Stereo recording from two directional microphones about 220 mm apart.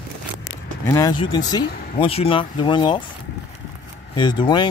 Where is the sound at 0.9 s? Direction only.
15° left (ahead or behind).